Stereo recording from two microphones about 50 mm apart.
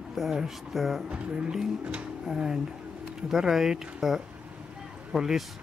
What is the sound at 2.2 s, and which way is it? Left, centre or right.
Speech, centre.